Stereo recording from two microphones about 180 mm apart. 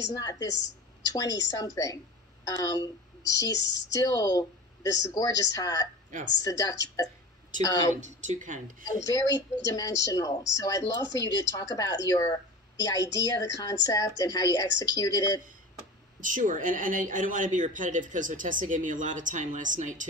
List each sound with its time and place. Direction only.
0.0 s a woman's voice: 20° left (ahead or behind)
7.9 s a man's voice: 45° right (ahead or behind)
8.8 s speech: 20° left (ahead or behind)
16.2 s a man's voice: 45° right (ahead or behind)